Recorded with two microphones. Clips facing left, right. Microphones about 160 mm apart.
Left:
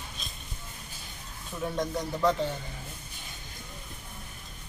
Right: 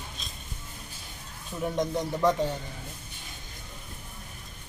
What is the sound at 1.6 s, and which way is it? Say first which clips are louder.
Speech: right 3 dB; 20° right (ahead or behind).